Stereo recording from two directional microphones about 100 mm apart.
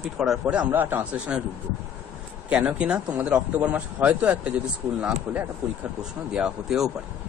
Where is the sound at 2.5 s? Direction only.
10° right (ahead or behind).